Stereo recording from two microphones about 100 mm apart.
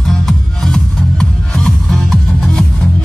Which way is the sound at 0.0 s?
5° left (ahead or behind).